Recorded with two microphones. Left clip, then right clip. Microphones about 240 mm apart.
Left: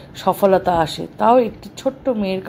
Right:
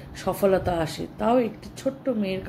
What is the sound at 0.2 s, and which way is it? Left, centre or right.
Speech, centre.